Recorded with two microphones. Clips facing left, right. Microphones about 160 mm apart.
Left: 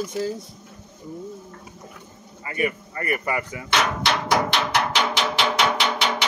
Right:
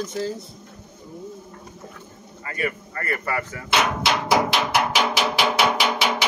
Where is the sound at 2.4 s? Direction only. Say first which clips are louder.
Left 2 dB; 20° left (ahead or behind).